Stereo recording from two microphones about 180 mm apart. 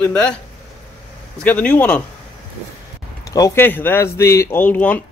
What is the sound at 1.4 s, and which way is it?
Speech, 10° left (ahead or behind).